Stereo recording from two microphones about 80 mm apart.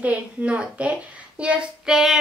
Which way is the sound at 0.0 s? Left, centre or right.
Centre.